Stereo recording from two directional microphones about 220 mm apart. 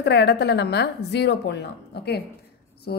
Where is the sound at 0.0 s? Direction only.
50° left (ahead or behind).